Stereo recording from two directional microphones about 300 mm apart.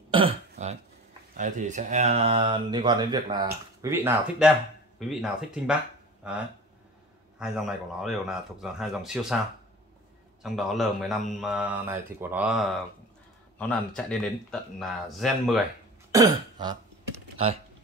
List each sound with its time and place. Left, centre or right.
0.1 s throat clearing: centre
1.3 s speech: right; by 5.8 s centre
7.3 s speech: centre
10.4 s speech: centre
16.1 s throat clearing: centre